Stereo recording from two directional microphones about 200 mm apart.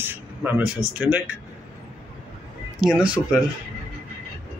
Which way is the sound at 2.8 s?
5° right (ahead or behind).